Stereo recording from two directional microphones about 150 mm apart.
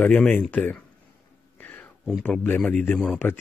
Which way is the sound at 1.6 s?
10° left (ahead or behind).